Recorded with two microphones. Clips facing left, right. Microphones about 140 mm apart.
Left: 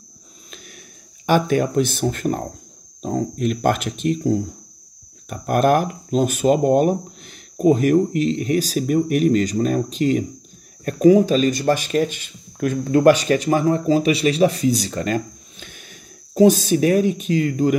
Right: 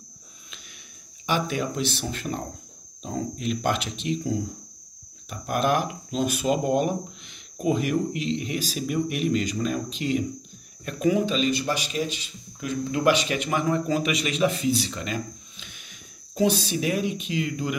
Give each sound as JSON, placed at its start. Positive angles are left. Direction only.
{"t": 1.2, "sound": "speech", "side_deg": 50}